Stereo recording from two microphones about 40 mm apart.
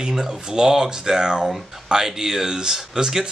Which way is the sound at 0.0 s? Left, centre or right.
Centre.